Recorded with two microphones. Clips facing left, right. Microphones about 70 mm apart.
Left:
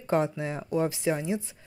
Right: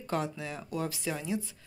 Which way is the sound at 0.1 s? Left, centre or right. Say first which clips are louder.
Left 7 dB; left.